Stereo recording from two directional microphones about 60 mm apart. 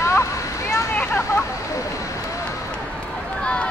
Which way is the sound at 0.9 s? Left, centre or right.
Left.